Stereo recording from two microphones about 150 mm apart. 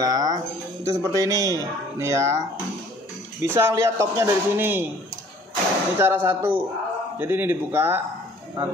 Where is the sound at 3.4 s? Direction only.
15° right (ahead or behind).